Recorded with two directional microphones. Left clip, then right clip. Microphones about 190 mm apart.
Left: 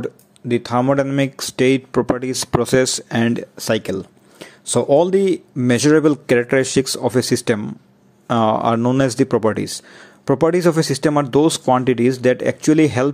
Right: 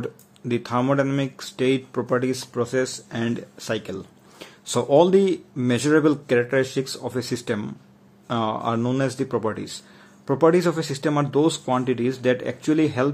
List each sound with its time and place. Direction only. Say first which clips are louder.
0.0 s speech: left 5 dB; 20° left (ahead or behind)
1.1 s speech: left 7 dB; 35° left (ahead or behind)